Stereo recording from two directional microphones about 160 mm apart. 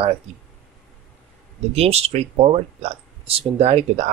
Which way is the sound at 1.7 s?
40° right (ahead or behind).